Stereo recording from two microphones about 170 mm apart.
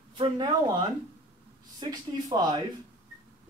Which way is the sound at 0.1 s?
30° right (ahead or behind).